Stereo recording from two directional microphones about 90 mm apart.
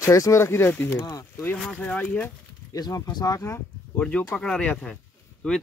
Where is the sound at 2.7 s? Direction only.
40° left (ahead or behind).